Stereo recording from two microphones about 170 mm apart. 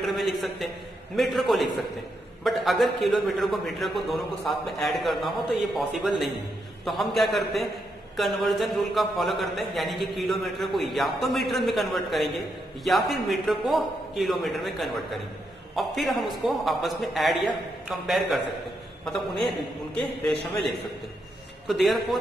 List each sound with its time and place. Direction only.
0.0 s a man's voice: centre (ahead or behind)
20.0 s a man's voice: centre (ahead or behind)